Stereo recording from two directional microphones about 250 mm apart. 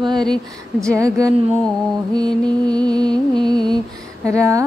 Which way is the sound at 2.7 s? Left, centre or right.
Centre.